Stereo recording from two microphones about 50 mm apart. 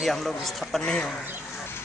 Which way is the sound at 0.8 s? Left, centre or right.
Centre.